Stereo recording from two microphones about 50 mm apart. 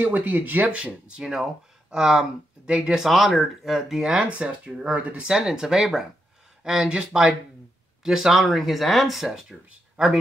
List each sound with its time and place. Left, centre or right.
0.0 s speech: right
0.7 s speech: right
3.0 s speech: centre
4.0 s speech: centre
5.2 s speech: centre
10.0 s speech: right